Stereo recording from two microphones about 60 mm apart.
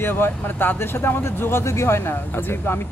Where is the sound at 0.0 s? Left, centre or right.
Left.